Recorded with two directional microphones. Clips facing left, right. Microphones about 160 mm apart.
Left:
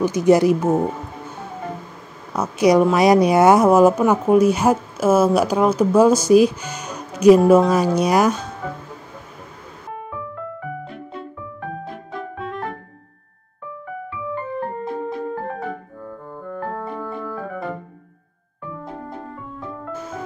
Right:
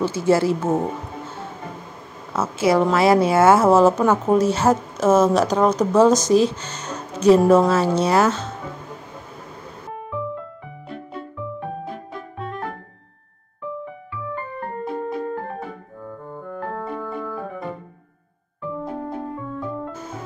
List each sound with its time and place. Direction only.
0.0 s speech: 15° left (ahead or behind)
2.6 s speech: 15° left (ahead or behind)
14.5 s keyboard: centre (ahead or behind)
16.1 s piano: centre (ahead or behind)